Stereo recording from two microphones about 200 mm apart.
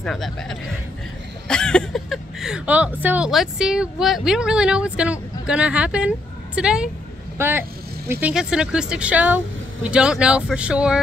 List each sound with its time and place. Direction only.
0.0 s speech: centre (ahead or behind)